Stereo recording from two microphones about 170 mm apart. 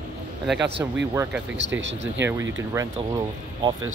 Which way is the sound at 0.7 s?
90° right.